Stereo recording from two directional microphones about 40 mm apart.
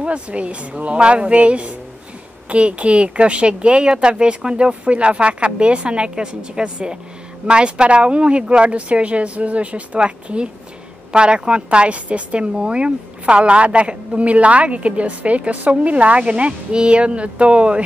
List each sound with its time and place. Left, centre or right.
0.0 s a woman's voice: right